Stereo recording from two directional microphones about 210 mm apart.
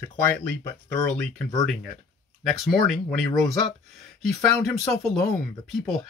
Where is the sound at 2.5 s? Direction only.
Centre (ahead or behind).